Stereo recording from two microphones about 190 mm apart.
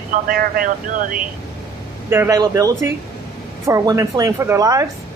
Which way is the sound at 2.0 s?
15° right (ahead or behind).